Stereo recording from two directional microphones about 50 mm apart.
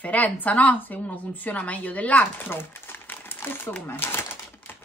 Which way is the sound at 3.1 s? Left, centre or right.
Left.